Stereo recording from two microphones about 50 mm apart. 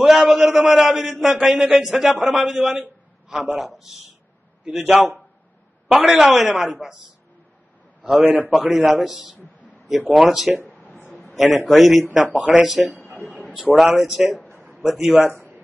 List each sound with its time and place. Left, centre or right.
0.0 s a man's voice: centre
8.2 s a man's voice: right
8.5 s a man's voice: centre
12.4 s speech: right
12.6 s a man's voice: centre